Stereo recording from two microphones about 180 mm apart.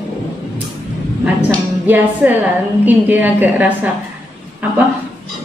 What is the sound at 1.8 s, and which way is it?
A woman's voice, 10° right (ahead or behind).